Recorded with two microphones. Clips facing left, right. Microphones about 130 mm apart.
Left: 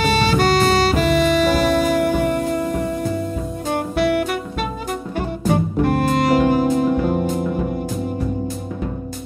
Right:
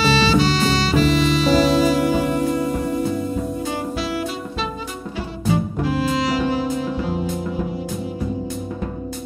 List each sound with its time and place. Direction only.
0.0 s music: 55° left (ahead or behind)